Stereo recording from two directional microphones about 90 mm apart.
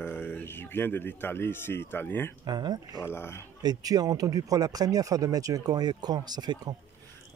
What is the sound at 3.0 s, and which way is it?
Speech, 30° left (ahead or behind).